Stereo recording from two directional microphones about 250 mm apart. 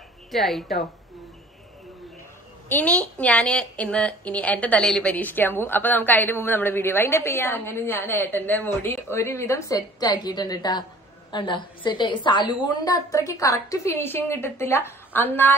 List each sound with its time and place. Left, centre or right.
0.3 s a woman's voice: centre
2.7 s a woman's voice: centre